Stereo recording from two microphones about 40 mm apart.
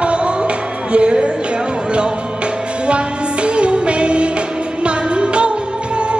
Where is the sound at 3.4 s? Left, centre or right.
Right.